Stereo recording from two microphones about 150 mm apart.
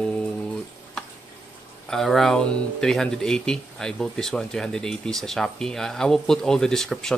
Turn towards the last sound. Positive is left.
turn(degrees=0)  # may be behind; listen again after turning